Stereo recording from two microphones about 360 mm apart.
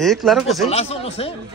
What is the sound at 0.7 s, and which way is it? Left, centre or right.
Speech, centre.